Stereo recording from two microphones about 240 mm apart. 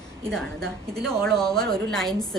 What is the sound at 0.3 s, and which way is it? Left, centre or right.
A woman's voice, centre.